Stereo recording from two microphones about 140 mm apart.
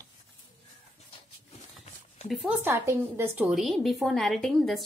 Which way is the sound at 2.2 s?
10° right (ahead or behind).